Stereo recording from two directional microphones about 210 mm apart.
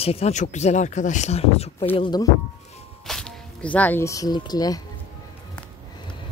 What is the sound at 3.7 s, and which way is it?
Speech, 10° left (ahead or behind).